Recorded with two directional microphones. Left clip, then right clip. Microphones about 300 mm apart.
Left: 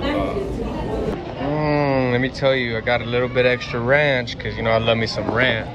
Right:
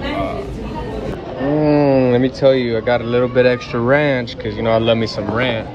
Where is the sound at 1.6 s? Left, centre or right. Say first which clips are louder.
Right 6 dB; left.